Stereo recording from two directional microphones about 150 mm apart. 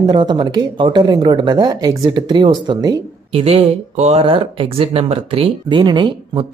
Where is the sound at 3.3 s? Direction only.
40° right (ahead or behind).